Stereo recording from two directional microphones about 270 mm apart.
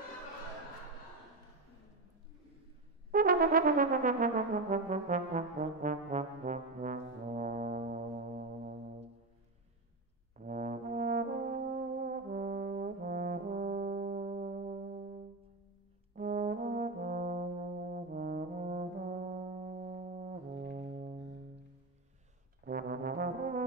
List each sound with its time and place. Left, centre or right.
3.1 s brass instrument: right
10.3 s brass instrument: right
16.2 s brass instrument: right
22.7 s brass instrument: right